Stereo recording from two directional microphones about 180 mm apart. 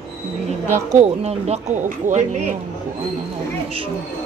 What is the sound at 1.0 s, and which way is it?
Speech, 35° right (ahead or behind).